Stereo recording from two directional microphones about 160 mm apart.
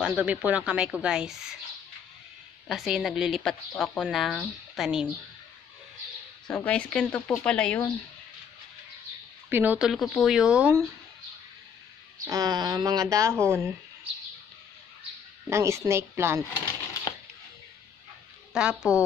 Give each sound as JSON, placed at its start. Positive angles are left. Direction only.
{"t": 0.0, "sound": "speech", "side_deg": -5}
{"t": 2.7, "sound": "speech", "side_deg": 0}
{"t": 6.4, "sound": "speech", "side_deg": 5}
{"t": 9.5, "sound": "speech", "side_deg": -10}
{"t": 12.3, "sound": "speech", "side_deg": -25}
{"t": 15.5, "sound": "speech", "side_deg": -15}
{"t": 18.5, "sound": "speech", "side_deg": -5}